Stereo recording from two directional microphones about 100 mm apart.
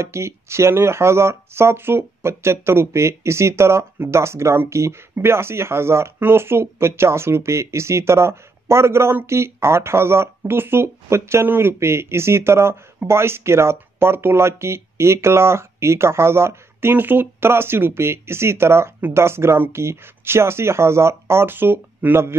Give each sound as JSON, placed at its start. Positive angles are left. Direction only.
{"t": 0.0, "sound": "speech", "side_deg": -25}